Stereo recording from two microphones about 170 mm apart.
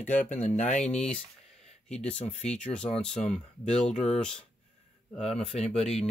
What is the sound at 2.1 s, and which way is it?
Speech, 40° left (ahead or behind).